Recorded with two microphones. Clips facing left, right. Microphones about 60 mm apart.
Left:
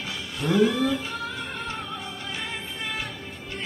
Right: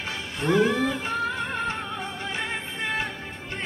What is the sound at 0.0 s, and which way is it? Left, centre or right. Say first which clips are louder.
Music: right 2 dB; right.